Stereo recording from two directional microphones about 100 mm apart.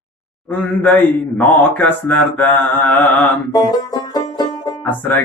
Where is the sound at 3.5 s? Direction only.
40° left (ahead or behind).